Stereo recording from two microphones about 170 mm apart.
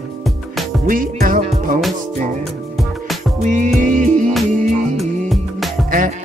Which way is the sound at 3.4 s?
45° right (ahead or behind).